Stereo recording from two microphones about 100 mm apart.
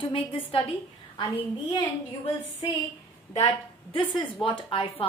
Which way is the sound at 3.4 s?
60° left (ahead or behind).